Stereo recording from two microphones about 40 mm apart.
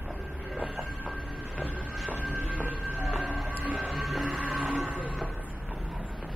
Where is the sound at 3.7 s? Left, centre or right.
Centre.